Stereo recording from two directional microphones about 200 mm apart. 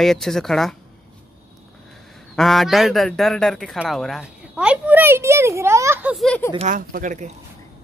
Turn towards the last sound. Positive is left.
turn(degrees=-40)  # may be behind; listen again after turning